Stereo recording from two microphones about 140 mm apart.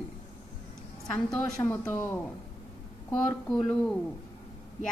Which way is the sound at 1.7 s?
15° left (ahead or behind).